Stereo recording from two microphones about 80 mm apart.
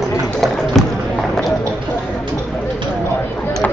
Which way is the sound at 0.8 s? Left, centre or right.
Centre.